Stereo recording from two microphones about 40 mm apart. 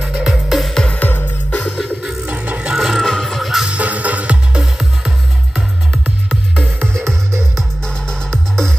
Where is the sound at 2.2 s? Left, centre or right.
Right.